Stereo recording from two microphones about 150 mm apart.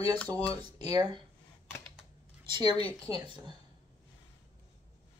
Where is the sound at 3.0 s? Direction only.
25° right (ahead or behind).